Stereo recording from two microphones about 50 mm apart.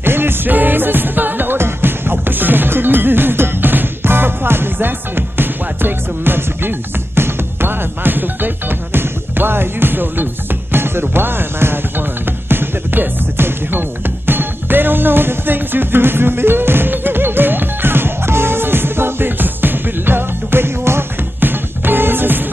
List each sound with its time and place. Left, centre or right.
0.0 s music: right
21.4 s music: right